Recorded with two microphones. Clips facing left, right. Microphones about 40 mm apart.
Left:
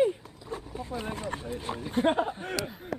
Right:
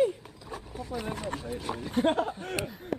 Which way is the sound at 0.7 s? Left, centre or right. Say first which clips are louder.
Right 1 dB; left.